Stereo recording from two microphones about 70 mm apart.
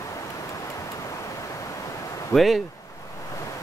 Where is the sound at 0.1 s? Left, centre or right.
Left.